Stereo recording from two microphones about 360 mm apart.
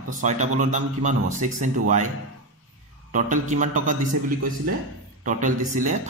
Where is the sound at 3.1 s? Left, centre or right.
Right.